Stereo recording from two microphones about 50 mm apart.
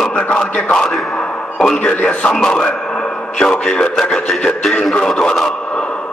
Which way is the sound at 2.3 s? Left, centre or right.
Centre.